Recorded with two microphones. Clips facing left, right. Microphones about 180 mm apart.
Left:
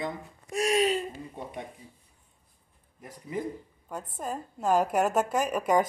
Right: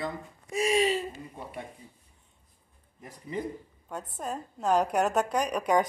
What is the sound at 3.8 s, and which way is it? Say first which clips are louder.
A woman's voice: even; centre (ahead or behind).